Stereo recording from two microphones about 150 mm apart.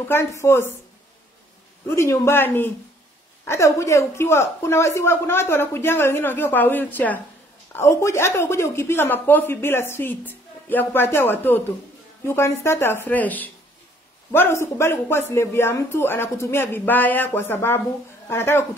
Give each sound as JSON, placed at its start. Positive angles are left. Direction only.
{"t": 0.1, "sound": "speech", "side_deg": 20}
{"t": 1.9, "sound": "speech", "side_deg": 20}